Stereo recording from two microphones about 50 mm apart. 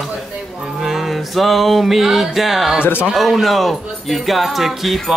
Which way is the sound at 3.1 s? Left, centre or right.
Centre.